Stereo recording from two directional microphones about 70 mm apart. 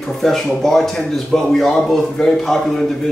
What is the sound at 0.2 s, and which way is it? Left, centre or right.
Speech, centre.